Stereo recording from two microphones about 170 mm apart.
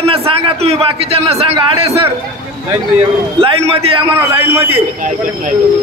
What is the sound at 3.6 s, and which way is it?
Speech, 35° right (ahead or behind).